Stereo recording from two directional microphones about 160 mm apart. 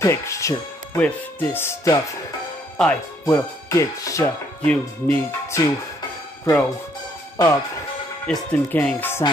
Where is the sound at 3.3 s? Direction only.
20° left (ahead or behind).